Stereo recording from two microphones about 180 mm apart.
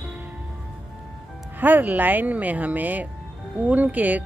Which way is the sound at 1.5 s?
10° right (ahead or behind).